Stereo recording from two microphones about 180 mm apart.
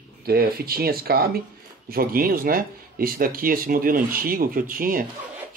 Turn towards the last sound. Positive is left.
turn(degrees=-50)  # may be behind; listen again after turning